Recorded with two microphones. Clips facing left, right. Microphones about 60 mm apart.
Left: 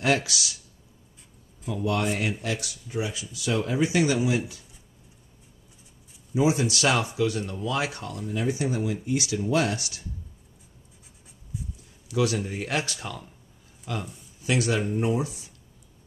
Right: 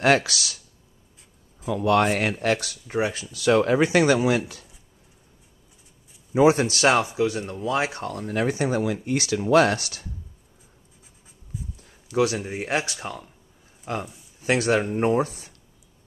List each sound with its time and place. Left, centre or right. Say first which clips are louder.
0.0 s speech: right 5 dB; right
1.7 s speech: right 6 dB; right
6.3 s speech: right 5 dB; right
6.8 s speech: right 4 dB; right
8.0 s speech: right 4 dB; right
11.5 s a sound: even; centre
12.2 s speech: right 3 dB; right
13.9 s speech: right 3 dB; right